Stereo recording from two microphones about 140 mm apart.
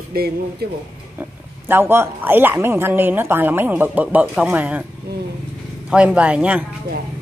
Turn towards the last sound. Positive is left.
turn(degrees=-10)  # may be behind; listen again after turning